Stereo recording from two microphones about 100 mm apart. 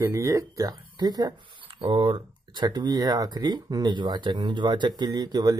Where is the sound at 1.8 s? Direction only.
55° right (ahead or behind).